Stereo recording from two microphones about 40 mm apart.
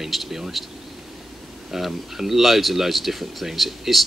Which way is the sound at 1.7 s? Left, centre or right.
Centre.